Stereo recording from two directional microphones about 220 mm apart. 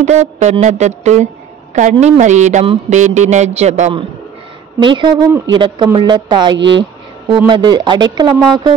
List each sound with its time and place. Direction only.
0.0 s a woman's voice: 30° right (ahead or behind)
6.5 s speech: 55° right (ahead or behind)
7.4 s a woman's voice: 20° right (ahead or behind)